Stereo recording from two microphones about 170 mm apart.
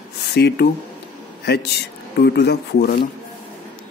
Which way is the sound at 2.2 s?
70° left (ahead or behind).